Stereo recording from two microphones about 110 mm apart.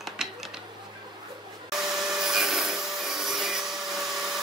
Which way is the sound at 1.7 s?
5° right (ahead or behind).